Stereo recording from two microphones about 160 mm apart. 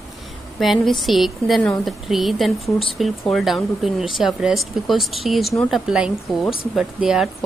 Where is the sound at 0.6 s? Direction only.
Centre (ahead or behind).